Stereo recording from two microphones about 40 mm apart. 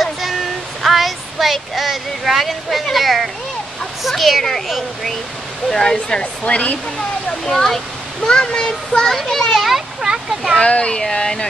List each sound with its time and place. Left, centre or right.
0.0 s a sound: centre
0.8 s speech: centre
5.7 s a child's voice: centre
6.4 s speech: left
7.4 s speech: centre
8.3 s a child's voice: centre
9.1 s speech: centre
9.6 s a sound: centre
10.6 s a child's voice: left